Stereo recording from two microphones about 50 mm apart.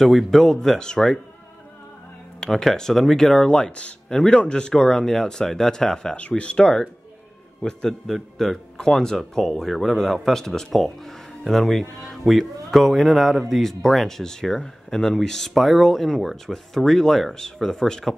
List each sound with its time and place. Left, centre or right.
0.0 s speech: centre
2.7 s speech: centre
6.1 s speech: left; by 18.1 s centre